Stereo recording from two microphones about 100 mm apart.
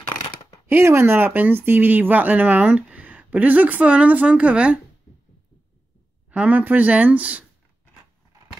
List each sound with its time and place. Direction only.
0.1 s a sound: 35° left (ahead or behind)
0.7 s speech: 25° right (ahead or behind)
6.3 s speech: 15° right (ahead or behind)